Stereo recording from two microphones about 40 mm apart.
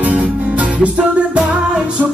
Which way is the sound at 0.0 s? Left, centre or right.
Right.